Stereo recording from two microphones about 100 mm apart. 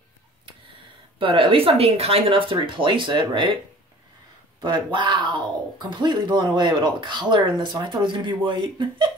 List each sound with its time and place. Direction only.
1.2 s speech: 60° right (ahead or behind)
4.6 s speech: 50° right (ahead or behind)